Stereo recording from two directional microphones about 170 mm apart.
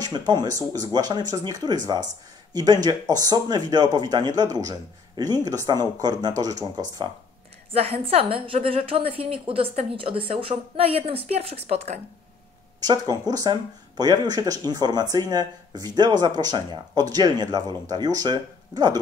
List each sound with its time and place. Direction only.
0.3 s speech: 20° right (ahead or behind)
7.7 s a woman's voice: 35° right (ahead or behind)
12.8 s speech: 25° right (ahead or behind)